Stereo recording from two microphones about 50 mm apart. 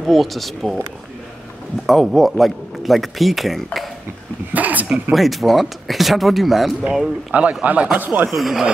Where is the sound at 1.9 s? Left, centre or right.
Centre.